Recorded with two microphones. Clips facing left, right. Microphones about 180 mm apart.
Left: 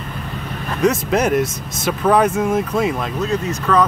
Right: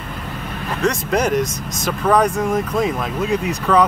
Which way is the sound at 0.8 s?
5° left (ahead or behind).